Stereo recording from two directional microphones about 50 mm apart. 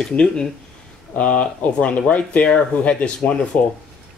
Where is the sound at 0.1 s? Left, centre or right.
Centre.